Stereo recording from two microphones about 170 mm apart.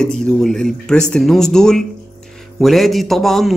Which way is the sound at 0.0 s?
5° left (ahead or behind).